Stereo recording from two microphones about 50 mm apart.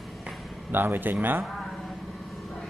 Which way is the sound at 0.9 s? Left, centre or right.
Right.